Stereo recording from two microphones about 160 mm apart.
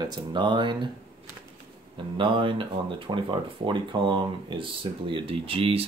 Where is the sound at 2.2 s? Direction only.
30° right (ahead or behind).